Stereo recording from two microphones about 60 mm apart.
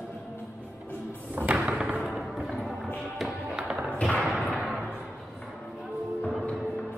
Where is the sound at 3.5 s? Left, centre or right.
Centre.